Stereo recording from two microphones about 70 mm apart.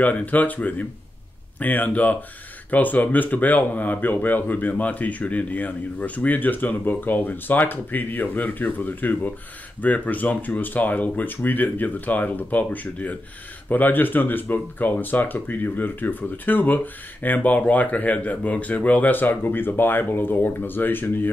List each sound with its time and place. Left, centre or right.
0.0 s speech: left